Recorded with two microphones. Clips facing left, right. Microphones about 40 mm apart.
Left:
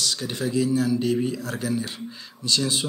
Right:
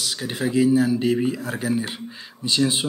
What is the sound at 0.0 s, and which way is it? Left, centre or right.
Speech, centre.